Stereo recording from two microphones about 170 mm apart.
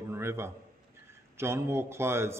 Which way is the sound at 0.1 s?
15° right (ahead or behind).